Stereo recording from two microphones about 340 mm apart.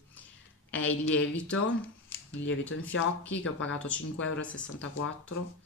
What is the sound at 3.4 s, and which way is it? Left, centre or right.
A woman's voice, left.